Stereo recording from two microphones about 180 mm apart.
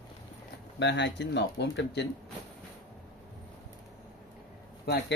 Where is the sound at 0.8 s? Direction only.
75° left (ahead or behind).